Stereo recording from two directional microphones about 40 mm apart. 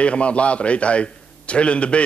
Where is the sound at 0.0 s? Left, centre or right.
Left.